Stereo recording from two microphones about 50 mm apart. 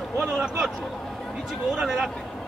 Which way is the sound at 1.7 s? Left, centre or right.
Centre.